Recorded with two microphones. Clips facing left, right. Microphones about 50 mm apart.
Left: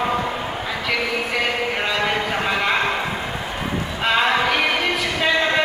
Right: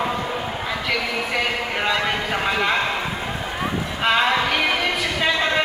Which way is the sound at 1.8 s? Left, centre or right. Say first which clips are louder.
Right 2 dB; centre.